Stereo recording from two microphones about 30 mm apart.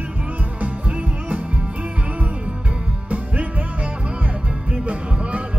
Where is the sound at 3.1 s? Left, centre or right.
Right.